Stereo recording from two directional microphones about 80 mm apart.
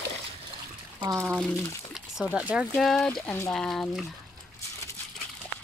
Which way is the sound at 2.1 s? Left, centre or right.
Centre.